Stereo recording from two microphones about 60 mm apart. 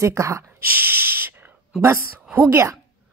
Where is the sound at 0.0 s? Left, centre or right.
Right.